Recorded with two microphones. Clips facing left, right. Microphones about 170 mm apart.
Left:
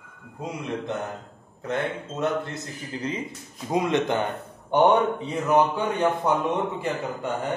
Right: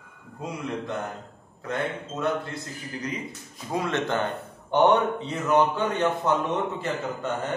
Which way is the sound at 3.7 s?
15° left (ahead or behind).